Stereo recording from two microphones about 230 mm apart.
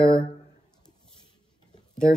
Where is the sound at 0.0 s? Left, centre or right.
Left.